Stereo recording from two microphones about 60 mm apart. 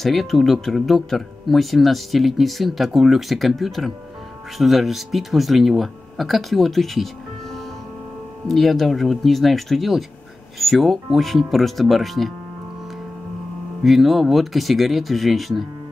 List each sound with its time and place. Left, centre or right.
0.0 s speech: centre
8.5 s speech: centre
13.8 s speech: centre